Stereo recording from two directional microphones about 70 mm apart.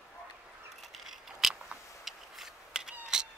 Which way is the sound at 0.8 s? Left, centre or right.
Centre.